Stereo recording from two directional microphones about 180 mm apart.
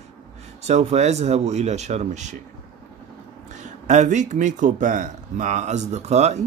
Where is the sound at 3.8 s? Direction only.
40° right (ahead or behind).